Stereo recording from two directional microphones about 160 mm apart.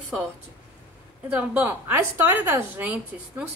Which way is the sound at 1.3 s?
10° right (ahead or behind).